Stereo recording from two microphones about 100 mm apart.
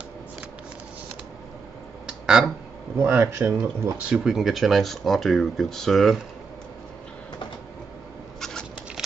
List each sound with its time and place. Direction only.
2.0 s a sound: 5° right (ahead or behind)
3.0 s speech: 20° right (ahead or behind)
4.1 s speech: 5° right (ahead or behind)